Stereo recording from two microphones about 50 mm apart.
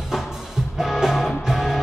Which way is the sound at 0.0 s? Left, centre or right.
Centre.